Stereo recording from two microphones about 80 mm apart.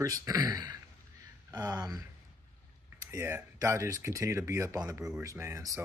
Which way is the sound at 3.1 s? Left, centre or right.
Right.